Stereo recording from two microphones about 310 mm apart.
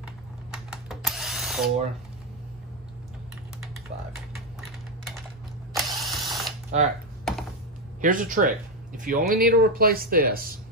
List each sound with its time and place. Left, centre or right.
0.5 s drill: centre
5.8 s ratchet: centre
6.7 s speech: right
8.0 s speech: right